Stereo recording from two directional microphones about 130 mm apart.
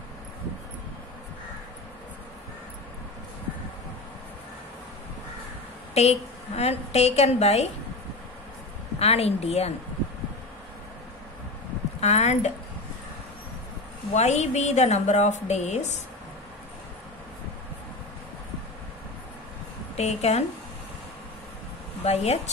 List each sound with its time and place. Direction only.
5.9 s a woman's voice: 55° left (ahead or behind)
9.0 s a woman's voice: 55° left (ahead or behind)
12.0 s a woman's voice: 60° left (ahead or behind)
14.1 s a woman's voice: 60° left (ahead or behind)
20.0 s a woman's voice: 55° left (ahead or behind)
22.0 s a woman's voice: 55° left (ahead or behind)